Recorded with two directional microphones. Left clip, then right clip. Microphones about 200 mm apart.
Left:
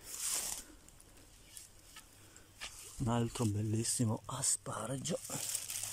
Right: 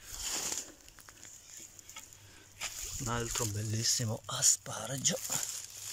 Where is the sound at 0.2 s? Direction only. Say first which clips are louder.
Right 4 dB; 50° right (ahead or behind).